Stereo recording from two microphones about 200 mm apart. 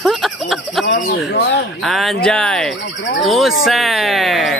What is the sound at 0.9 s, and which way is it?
Speech, 45° left (ahead or behind).